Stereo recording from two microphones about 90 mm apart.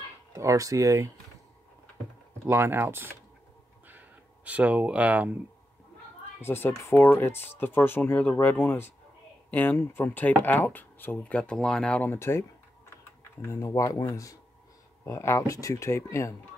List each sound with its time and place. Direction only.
0.3 s speech: 35° right (ahead or behind)
2.4 s speech: 25° right (ahead or behind)
4.5 s speech: 15° right (ahead or behind)
6.4 s speech: 25° left (ahead or behind); by 12.0 s 5° left (ahead or behind)
12.0 s speech: 25° left (ahead or behind)